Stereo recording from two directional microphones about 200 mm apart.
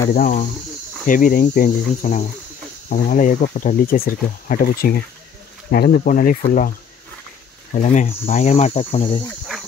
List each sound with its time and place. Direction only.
0.1 s speech: 40° left (ahead or behind)
7.7 s speech: 40° left (ahead or behind)